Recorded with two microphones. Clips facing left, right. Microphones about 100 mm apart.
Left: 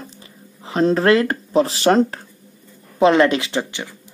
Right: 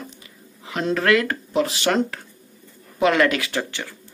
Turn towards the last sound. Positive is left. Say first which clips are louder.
# left 3 dB
turn(degrees=20)  # may be behind; listen again after turning